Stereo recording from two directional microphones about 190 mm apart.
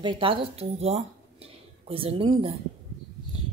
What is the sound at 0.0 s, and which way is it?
Speech, 25° right (ahead or behind).